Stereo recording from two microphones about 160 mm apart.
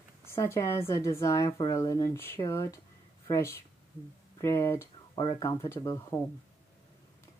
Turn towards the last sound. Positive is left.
turn(degrees=20)  # may be behind; listen again after turning